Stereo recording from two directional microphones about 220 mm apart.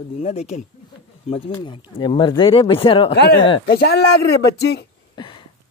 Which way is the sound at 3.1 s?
50° left (ahead or behind).